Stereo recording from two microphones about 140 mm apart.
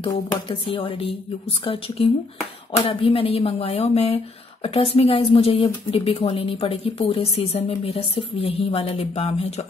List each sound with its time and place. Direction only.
0.0 s speech: 35° left (ahead or behind)